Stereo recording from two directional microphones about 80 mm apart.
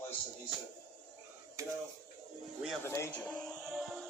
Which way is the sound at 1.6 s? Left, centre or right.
Right.